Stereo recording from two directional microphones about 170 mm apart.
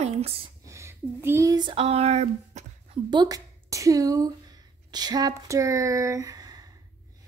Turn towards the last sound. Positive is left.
turn(degrees=-20)  # may be behind; listen again after turning